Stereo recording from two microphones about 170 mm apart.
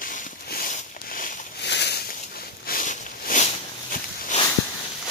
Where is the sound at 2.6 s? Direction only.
55° left (ahead or behind).